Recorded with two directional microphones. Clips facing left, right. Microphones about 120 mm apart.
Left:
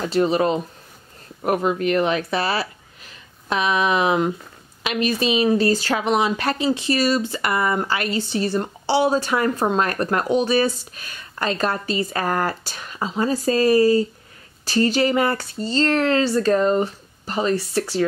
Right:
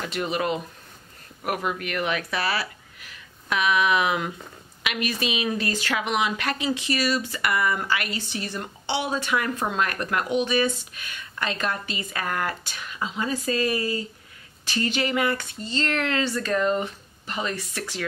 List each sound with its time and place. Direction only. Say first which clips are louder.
0.0 s a woman's voice: left 8 dB; 35° left (ahead or behind)